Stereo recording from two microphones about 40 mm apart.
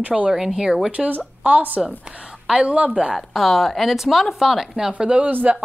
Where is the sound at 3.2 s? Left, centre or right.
Centre.